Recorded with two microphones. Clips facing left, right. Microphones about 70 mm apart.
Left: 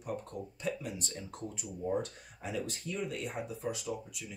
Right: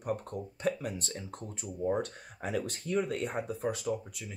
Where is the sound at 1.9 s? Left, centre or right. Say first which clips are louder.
Even; right.